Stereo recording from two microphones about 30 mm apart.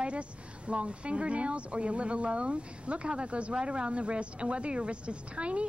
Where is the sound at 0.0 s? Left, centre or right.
Right.